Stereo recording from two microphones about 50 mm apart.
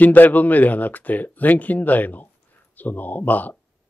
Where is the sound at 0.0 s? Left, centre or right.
Left.